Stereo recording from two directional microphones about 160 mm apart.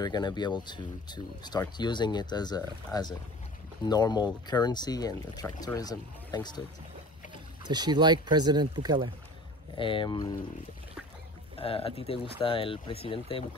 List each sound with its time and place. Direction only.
0.0 s speech: 25° left (ahead or behind)
7.6 s speech: 25° right (ahead or behind)
9.8 s speech: 30° left (ahead or behind)
11.5 s speech: 35° left (ahead or behind)